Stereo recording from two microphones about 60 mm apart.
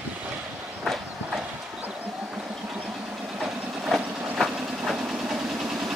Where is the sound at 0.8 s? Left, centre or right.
Centre.